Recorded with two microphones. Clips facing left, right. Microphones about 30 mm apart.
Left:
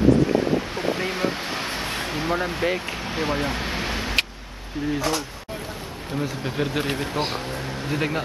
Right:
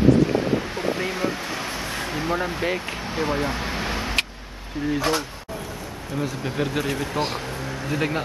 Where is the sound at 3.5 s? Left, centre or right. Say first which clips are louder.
Even; centre.